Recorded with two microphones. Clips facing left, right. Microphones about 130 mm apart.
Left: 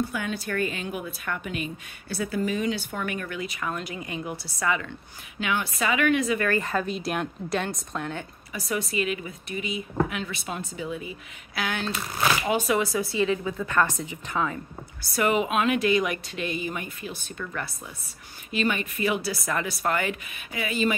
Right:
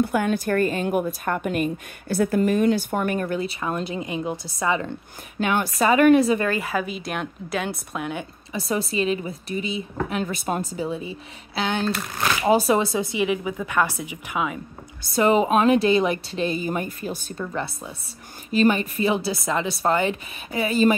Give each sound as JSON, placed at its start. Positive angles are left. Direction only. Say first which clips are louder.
{"t": 0.0, "sound": "a woman's voice", "louder": "right 8 dB", "side_deg": -50}
{"t": 5.4, "sound": "a woman's voice", "louder": "right 6 dB", "side_deg": -40}
{"t": 6.5, "sound": "a woman's voice", "louder": "right 1 dB", "side_deg": -5}
{"t": 8.5, "sound": "a woman's voice", "louder": "right 4 dB", "side_deg": -30}
{"t": 15.0, "sound": "a woman's voice", "louder": "right 5 dB", "side_deg": -25}
{"t": 17.5, "sound": "a woman's voice", "louder": "right 6 dB", "side_deg": -25}
{"t": 18.5, "sound": "a woman's voice", "louder": "right 7 dB", "side_deg": -35}